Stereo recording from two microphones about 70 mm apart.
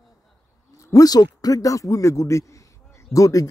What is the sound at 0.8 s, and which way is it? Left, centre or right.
A man's voice, left.